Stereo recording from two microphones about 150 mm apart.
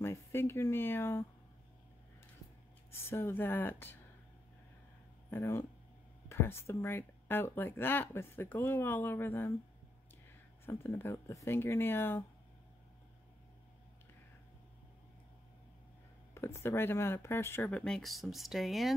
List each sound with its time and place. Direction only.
0.0 s a sound: 15° left (ahead or behind)
2.9 s speech: 15° left (ahead or behind)
5.3 s speech: 15° left (ahead or behind)
10.6 s speech: 15° left (ahead or behind)
16.3 s speech: 15° left (ahead or behind); by 18.9 s centre (ahead or behind)